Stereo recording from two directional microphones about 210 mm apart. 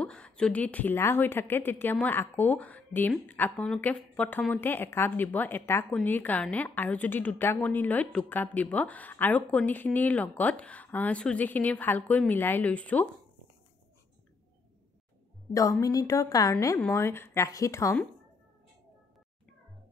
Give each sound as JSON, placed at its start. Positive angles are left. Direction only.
{"t": 0.0, "sound": "a woman's voice", "side_deg": 5}
{"t": 15.8, "sound": "a woman's voice", "side_deg": 15}